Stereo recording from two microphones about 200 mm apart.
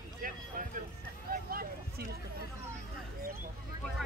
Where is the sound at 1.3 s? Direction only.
50° right (ahead or behind).